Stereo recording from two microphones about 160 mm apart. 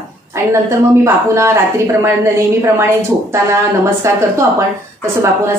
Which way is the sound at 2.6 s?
15° right (ahead or behind).